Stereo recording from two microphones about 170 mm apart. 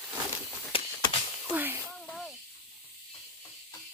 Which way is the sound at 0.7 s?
30° left (ahead or behind).